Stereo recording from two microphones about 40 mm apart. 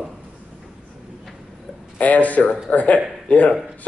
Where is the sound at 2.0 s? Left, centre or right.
Left.